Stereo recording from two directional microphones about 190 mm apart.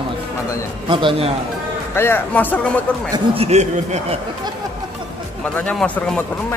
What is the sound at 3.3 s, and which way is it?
Speech, 35° right (ahead or behind).